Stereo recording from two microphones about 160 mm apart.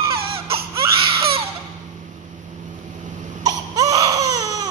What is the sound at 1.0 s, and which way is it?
Baby cry, 35° right (ahead or behind).